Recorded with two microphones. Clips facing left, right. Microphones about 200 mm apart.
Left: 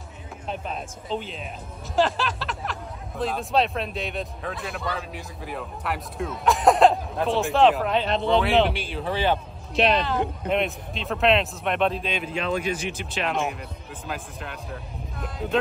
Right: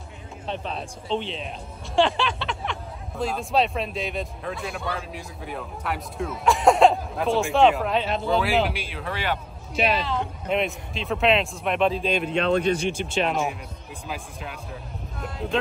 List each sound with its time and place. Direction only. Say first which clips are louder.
0.5 s speech: right 1 dB; 5° left (ahead or behind)
12.7 s speech: right 5 dB; 30° right (ahead or behind)
13.0 s speech: right 2 dB; centre (ahead or behind)